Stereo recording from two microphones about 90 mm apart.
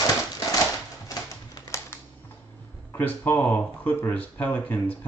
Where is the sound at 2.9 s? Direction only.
20° left (ahead or behind).